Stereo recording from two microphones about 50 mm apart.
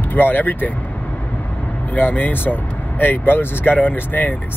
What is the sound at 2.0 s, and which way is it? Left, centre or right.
Speech, left.